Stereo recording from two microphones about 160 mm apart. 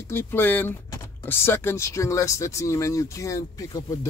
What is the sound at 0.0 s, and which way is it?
Speech, 15° left (ahead or behind).